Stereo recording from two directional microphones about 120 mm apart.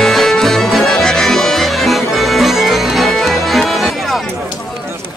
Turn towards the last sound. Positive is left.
turn(degrees=0)  # may be behind; listen again after turning